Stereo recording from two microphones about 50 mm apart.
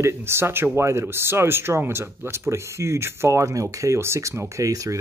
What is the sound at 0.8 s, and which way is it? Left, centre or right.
Speech, right.